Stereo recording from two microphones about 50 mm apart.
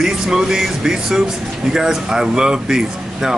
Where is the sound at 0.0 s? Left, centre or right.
Centre.